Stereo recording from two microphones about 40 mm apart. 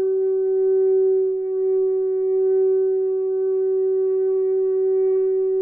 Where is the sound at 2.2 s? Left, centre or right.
Right.